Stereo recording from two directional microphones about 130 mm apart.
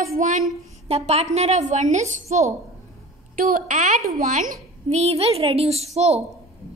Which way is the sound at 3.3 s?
90° right.